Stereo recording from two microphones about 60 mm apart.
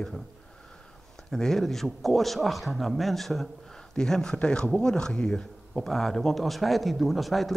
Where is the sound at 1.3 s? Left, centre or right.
Centre.